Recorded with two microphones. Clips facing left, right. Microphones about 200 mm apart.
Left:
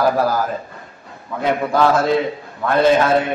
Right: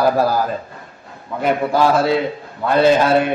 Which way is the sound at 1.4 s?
10° right (ahead or behind).